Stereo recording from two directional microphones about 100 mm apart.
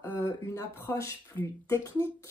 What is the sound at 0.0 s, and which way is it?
Speech, 25° left (ahead or behind).